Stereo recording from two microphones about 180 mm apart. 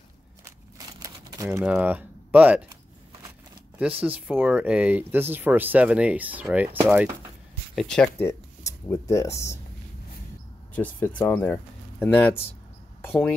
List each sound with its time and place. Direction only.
0.7 s crumpling: 20° right (ahead or behind)
1.7 s speech: 10° right (ahead or behind)
3.7 s speech: 10° right (ahead or behind)
7.7 s speech: 5° left (ahead or behind)
8.3 s speech: 15° left (ahead or behind)
10.7 s speech: 10° left (ahead or behind)